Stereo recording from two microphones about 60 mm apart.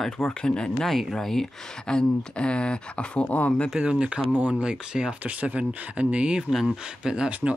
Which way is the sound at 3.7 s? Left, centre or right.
Centre.